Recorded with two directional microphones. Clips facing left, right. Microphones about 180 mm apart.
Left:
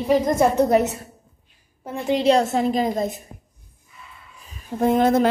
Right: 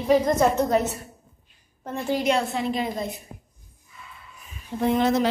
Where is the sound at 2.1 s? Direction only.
35° left (ahead or behind).